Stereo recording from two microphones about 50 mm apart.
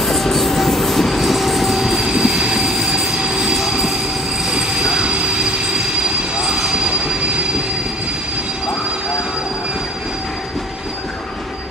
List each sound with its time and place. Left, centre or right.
0.0 s train: centre
6.5 s train: centre